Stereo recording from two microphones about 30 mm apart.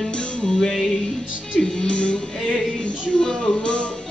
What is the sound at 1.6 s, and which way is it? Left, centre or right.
Music, left.